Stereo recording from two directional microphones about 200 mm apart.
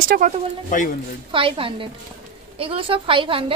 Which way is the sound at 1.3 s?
25° right (ahead or behind).